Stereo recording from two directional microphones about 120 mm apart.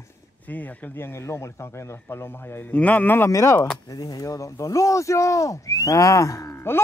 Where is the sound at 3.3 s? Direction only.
25° left (ahead or behind).